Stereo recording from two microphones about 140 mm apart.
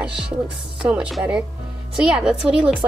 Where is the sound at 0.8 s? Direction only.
5° right (ahead or behind).